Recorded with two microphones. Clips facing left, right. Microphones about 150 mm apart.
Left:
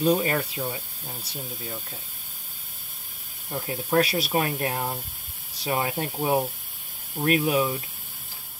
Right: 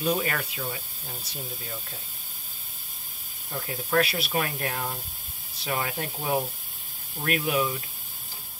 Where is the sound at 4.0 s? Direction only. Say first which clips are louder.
Left 2 dB; 40° left (ahead or behind).